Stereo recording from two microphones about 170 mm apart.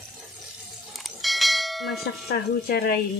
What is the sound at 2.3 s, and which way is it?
Speech, 65° left (ahead or behind).